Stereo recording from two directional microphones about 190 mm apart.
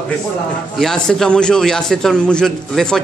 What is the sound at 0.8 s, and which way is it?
A man's voice, centre (ahead or behind).